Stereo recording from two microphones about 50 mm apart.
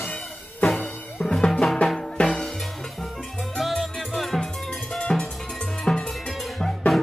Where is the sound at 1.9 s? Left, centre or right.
Centre.